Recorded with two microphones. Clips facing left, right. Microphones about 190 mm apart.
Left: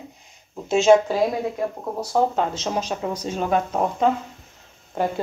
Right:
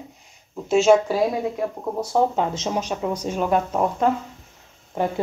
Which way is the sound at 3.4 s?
Centre (ahead or behind).